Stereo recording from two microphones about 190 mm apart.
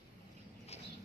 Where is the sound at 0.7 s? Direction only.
35° left (ahead or behind).